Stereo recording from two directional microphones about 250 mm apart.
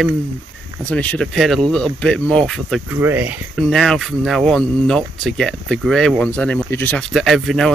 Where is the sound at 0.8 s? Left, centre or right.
Centre.